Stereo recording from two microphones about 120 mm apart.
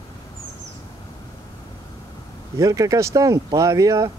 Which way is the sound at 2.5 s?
30° right (ahead or behind).